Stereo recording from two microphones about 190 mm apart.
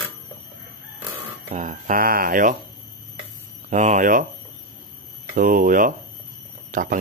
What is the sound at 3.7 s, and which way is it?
Speech, 40° right (ahead or behind).